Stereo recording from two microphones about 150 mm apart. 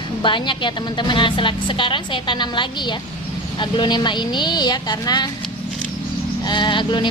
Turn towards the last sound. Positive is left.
turn(degrees=30)  # may be behind; listen again after turning